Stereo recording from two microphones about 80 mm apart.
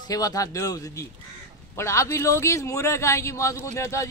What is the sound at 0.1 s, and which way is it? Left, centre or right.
A man's voice, left.